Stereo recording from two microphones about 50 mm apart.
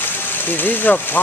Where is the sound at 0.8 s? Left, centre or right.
Left.